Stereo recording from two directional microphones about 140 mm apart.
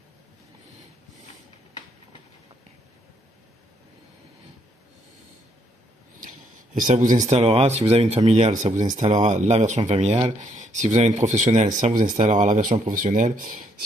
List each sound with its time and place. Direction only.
6.2 s speech: 70° right (ahead or behind); by 10.1 s 50° right (ahead or behind)
10.2 s speech: 60° right (ahead or behind); by 13.8 s 80° right